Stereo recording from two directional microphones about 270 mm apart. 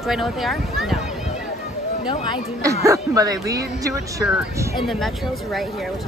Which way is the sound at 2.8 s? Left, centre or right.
Centre.